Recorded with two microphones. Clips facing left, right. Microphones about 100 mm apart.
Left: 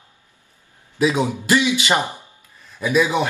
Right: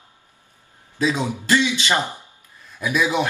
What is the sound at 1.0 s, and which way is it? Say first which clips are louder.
A man's voice: left 3 dB; 15° left (ahead or behind).